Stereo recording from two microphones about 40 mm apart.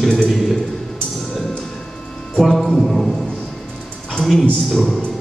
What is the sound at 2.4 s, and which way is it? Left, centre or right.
Music, centre.